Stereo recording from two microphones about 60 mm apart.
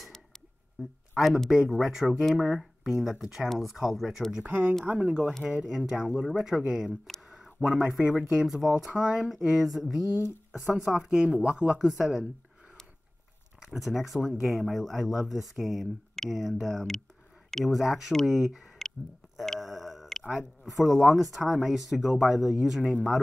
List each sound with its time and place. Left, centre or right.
1.2 s speech: centre
4.5 s speech: right
4.8 s speech: right
9.6 s speech: centre
11.9 s speech: centre
13.7 s speech: centre
19.6 s tick-tock: centre
20.7 s speech: centre